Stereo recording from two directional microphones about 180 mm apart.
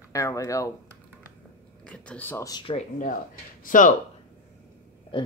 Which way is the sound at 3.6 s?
45° left (ahead or behind).